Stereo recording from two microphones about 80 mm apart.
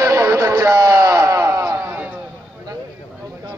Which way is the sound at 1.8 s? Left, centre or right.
Right.